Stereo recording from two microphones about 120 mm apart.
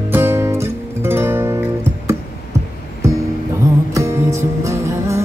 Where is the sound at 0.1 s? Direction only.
20° right (ahead or behind).